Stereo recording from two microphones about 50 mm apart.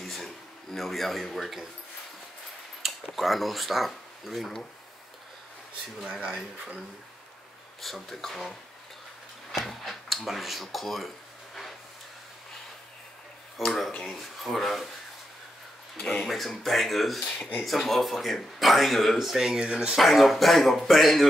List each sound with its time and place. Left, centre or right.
0.0 s a sound: centre
0.7 s speech: centre
2.8 s a sound: centre
3.2 s speech: centre
5.9 s speech: centre
7.8 s speech: centre
9.5 s speech: centre
13.7 s speech: centre
16.0 s speech: centre
16.3 s speech: centre
20.0 s speech: centre